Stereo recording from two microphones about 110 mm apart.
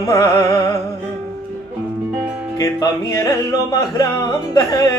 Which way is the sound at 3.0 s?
35° left (ahead or behind).